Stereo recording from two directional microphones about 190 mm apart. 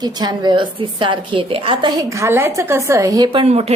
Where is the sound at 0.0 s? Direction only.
20° right (ahead or behind).